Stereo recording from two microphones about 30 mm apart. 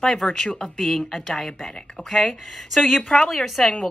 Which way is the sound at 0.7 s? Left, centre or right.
Centre.